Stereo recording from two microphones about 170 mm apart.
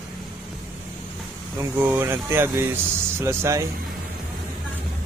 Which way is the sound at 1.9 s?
15° right (ahead or behind).